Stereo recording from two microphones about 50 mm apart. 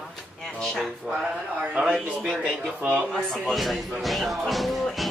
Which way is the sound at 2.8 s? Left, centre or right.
Right.